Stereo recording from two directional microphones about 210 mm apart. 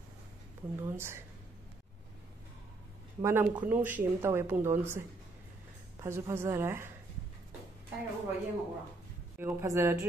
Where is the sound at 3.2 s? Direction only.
15° right (ahead or behind).